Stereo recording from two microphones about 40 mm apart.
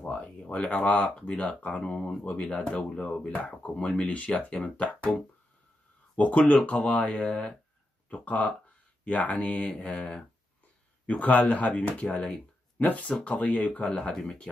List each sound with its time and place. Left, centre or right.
0.0 s a sound: left
0.5 s speech: left
1.8 s speech: left
6.1 s speech: left
13.8 s speech: left